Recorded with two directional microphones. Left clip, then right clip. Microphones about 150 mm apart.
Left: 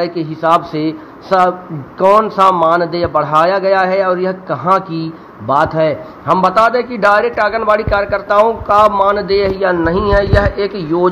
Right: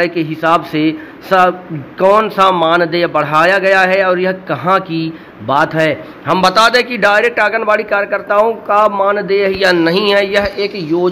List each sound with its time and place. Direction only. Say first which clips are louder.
0.0 s a man's voice: right 2 dB; 10° right (ahead or behind)
6.2 s speech: right 1 dB; 25° right (ahead or behind)
6.7 s a man's voice: right 1 dB; 10° right (ahead or behind)
9.7 s a man's voice: right 2 dB; 25° right (ahead or behind)